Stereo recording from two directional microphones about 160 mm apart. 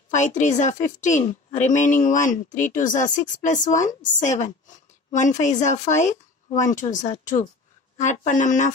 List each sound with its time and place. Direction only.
0.1 s a woman's voice: 50° left (ahead or behind)